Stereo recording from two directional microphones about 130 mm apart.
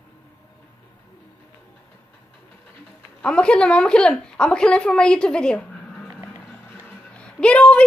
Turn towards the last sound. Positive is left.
turn(degrees=10)  # may be behind; listen again after turning